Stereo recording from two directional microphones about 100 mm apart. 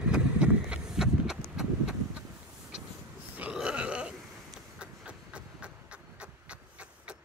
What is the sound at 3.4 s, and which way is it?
Burping, 10° right (ahead or behind).